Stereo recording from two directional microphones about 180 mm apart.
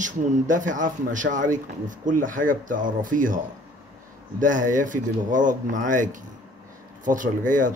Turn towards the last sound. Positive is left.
turn(degrees=-45)  # may be behind; listen again after turning